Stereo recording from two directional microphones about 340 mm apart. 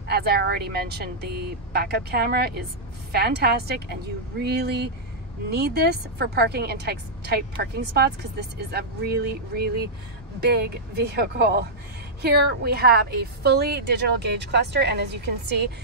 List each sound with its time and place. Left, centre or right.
0.1 s a woman's voice: right